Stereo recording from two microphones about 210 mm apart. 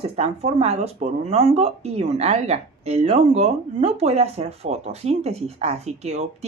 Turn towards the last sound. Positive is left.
turn(degrees=-30)  # may be behind; listen again after turning